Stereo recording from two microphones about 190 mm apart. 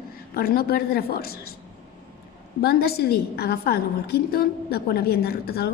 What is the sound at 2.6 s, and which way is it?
A woman's voice, 55° left (ahead or behind).